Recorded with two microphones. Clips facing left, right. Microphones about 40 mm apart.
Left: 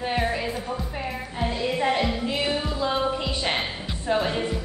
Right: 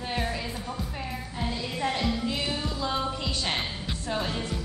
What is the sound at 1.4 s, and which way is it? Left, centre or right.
Music, left.